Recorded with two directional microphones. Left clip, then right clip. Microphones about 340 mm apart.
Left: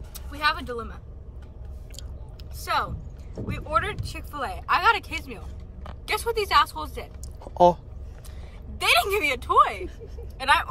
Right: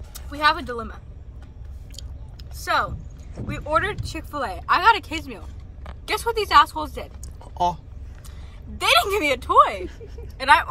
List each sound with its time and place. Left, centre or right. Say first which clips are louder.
0.1 s speech: right 5 dB; centre
2.6 s speech: right 4 dB; centre
7.4 s a sound: left 5 dB; left
8.7 s speech: right 3 dB; centre